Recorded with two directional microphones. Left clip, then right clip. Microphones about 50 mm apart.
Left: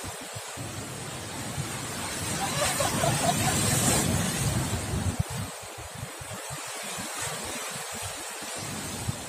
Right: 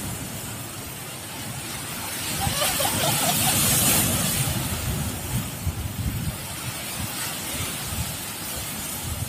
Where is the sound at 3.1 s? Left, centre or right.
Right.